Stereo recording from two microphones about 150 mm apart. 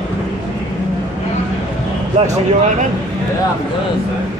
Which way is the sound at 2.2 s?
45° right (ahead or behind).